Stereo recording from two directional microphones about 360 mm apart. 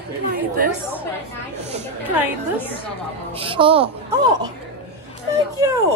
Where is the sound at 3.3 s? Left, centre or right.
Centre.